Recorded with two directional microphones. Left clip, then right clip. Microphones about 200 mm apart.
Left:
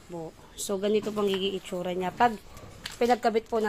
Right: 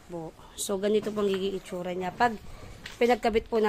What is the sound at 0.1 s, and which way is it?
Speech, 10° right (ahead or behind).